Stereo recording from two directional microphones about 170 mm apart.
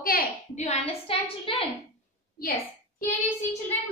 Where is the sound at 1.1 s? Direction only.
35° left (ahead or behind).